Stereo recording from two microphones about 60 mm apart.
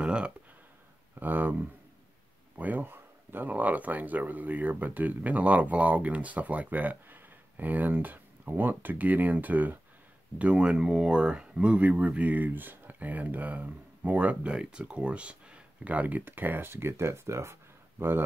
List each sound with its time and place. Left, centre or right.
0.0 s speech: centre
1.2 s speech: right
10.4 s speech: centre
14.5 s speech: centre; by 18.2 s right